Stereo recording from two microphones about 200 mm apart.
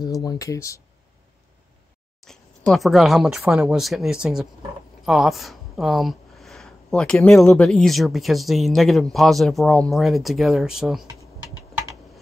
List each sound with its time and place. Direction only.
0.0 s speech: 20° left (ahead or behind)
2.2 s speech: centre (ahead or behind)